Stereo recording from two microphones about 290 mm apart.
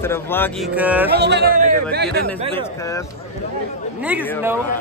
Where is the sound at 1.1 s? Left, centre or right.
Right.